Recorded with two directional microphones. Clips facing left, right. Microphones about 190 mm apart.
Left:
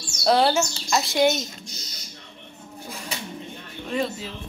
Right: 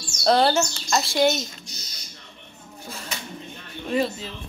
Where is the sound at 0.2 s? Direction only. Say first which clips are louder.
Even; 5° left (ahead or behind).